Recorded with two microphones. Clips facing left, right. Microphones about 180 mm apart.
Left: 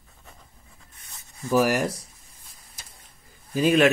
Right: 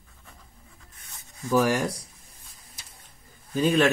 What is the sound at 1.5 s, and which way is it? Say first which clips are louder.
Speech: left 1 dB; 10° left (ahead or behind).